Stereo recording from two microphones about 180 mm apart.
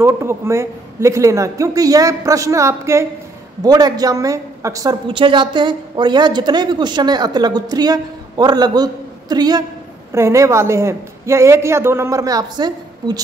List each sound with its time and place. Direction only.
0.0 s a woman's voice: 15° right (ahead or behind)